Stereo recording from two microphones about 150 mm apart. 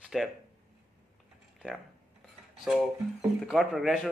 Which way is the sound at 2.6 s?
5° right (ahead or behind).